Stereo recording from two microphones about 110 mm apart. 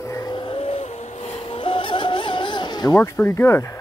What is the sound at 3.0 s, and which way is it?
Speech, 20° left (ahead or behind).